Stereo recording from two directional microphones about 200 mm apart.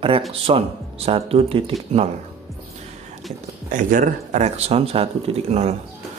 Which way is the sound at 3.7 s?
40° right (ahead or behind).